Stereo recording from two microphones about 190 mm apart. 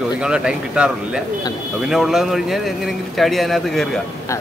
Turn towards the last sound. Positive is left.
turn(degrees=0)  # may be behind; listen again after turning